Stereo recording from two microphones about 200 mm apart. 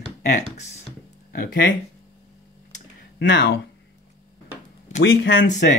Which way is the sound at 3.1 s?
60° left (ahead or behind).